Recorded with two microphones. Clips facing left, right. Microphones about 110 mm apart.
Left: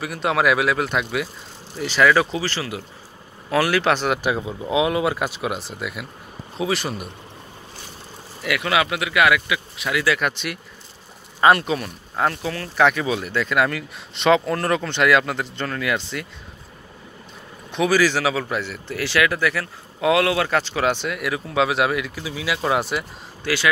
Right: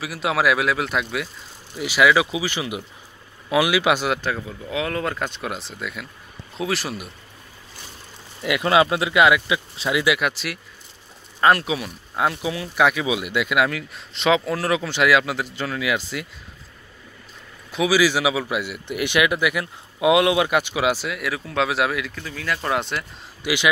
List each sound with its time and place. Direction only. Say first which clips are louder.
0.0 s speech: left 1 dB; centre (ahead or behind)
4.2 s speech: left 4 dB; 20° left (ahead or behind); by 7.1 s centre (ahead or behind)
8.4 s speech: right 3 dB; 25° right (ahead or behind)
10.1 s speech: even; centre (ahead or behind)
17.6 s speech: even; 5° right (ahead or behind)
23.4 s speech: even; 15° right (ahead or behind)